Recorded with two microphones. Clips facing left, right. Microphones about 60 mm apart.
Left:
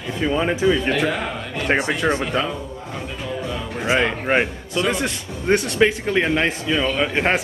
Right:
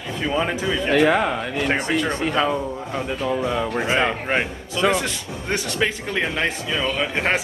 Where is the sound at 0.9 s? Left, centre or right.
Right.